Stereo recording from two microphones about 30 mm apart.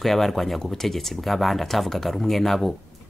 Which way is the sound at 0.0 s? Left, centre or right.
Centre.